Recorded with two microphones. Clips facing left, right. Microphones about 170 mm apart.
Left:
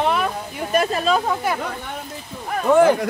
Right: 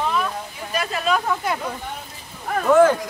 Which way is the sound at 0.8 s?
35° left (ahead or behind).